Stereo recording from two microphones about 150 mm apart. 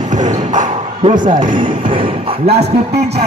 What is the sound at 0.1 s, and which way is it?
Bow-wow, 55° right (ahead or behind).